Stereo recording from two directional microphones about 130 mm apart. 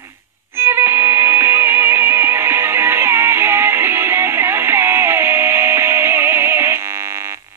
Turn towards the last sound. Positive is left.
turn(degrees=-20)  # may be behind; listen again after turning